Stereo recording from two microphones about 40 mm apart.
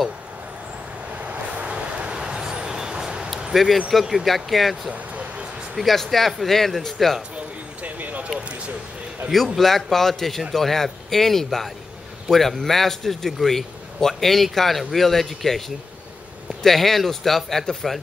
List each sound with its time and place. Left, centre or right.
1.2 s vehicle: right
3.5 s a man's voice: centre
4.9 s vehicle: right
5.8 s a man's voice: centre
7.8 s a sound: right
8.4 s speech: right
9.6 s a man's voice: centre
16.6 s a man's voice: centre